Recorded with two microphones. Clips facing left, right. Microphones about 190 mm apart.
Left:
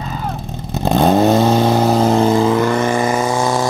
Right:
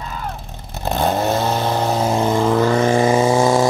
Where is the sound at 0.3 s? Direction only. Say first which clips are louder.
Left 8 dB; 15° left (ahead or behind).